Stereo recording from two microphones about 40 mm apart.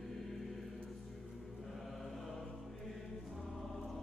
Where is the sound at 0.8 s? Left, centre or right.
Centre.